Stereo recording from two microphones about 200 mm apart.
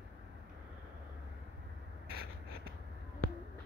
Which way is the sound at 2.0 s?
50° right (ahead or behind).